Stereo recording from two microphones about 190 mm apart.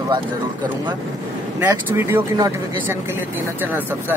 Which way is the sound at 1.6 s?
10° right (ahead or behind).